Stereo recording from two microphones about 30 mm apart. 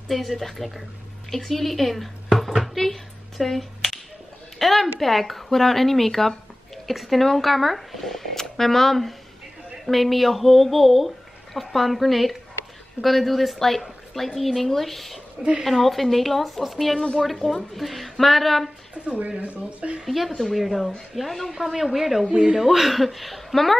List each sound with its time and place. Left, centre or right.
0.1 s a woman's voice: centre
3.4 s finger snapping: centre
4.6 s a woman's voice: centre
19.0 s speech: right
20.1 s a woman's voice: centre
22.3 s speech: right
22.6 s a woman's voice: centre